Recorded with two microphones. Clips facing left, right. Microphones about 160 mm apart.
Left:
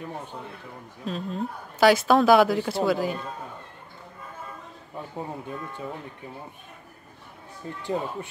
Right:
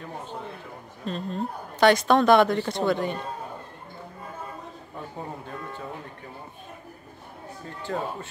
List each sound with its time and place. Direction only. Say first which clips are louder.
1.0 s a woman's voice: even; centre (ahead or behind)
7.8 s speech: left 1 dB; 15° left (ahead or behind)